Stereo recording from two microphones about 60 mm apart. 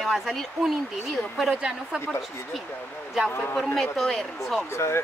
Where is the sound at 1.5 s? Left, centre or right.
Centre.